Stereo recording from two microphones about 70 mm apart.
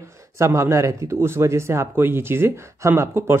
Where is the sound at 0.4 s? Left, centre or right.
Right.